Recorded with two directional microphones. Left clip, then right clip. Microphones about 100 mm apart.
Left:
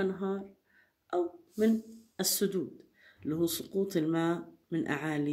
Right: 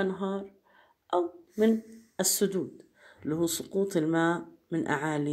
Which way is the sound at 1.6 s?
15° right (ahead or behind).